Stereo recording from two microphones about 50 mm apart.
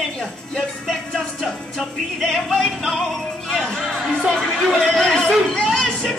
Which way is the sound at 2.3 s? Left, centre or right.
Centre.